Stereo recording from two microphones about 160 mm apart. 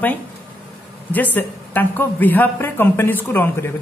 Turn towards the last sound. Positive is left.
turn(degrees=15)  # may be behind; listen again after turning